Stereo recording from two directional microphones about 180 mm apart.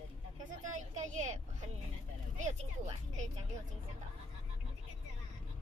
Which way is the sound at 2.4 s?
40° right (ahead or behind).